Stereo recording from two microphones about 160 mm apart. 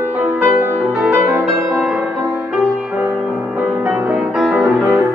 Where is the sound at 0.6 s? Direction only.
15° right (ahead or behind).